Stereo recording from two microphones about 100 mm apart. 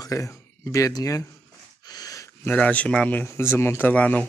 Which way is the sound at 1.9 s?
40° left (ahead or behind).